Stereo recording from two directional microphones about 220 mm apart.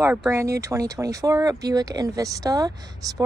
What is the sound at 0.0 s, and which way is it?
Speech, 10° right (ahead or behind).